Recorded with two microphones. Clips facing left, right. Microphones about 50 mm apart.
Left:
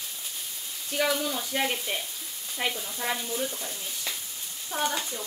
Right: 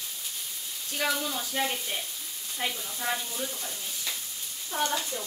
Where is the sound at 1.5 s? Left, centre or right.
Left.